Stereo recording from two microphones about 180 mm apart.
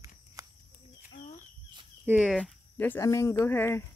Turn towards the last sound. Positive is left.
turn(degrees=10)  # may be behind; listen again after turning